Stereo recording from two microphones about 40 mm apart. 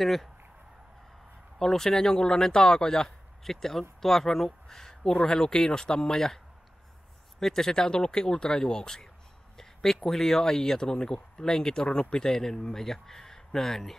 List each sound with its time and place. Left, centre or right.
0.0 s speech: centre
1.6 s speech: centre
9.6 s a sound: centre
10.0 s speech: centre